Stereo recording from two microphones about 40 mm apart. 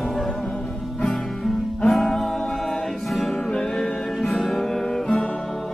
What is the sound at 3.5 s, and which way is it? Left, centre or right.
Music, centre.